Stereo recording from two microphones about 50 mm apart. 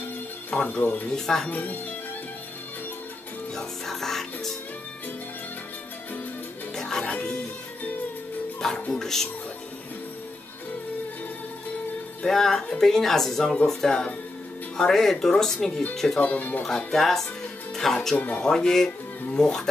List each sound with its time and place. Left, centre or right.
0.5 s speech: left
1.1 s speech: centre
1.5 s speech: left
3.5 s music: centre
6.7 s music: centre
7.1 s music: left
8.5 s music: centre
8.9 s speech: centre
12.3 s speech: centre
16.2 s speech: left
16.6 s speech: centre
18.1 s speech: left
18.4 s speech: centre